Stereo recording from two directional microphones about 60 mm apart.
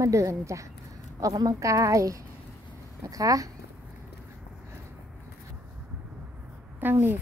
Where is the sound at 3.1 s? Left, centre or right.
Right.